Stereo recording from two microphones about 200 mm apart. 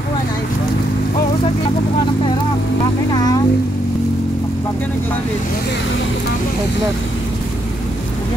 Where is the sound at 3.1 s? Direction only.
20° left (ahead or behind).